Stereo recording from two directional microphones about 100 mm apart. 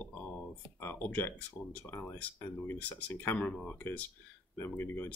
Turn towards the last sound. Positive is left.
turn(degrees=20)  # may be behind; listen again after turning